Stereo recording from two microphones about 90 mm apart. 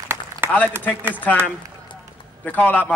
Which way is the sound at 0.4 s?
25° right (ahead or behind).